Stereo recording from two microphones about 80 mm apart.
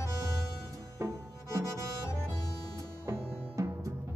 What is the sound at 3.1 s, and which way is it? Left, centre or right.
Music, right.